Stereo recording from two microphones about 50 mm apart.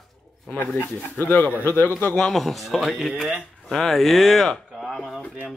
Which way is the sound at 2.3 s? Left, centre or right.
Centre.